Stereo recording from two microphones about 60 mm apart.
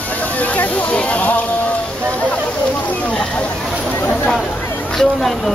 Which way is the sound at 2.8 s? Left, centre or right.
Left.